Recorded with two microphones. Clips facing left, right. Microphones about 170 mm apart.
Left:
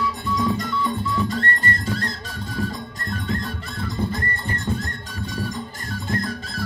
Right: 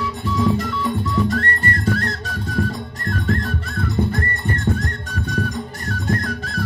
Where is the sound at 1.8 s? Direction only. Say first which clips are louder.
Right 5 dB; 65° right (ahead or behind).